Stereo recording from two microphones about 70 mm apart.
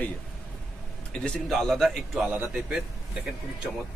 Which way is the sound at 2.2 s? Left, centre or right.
Right.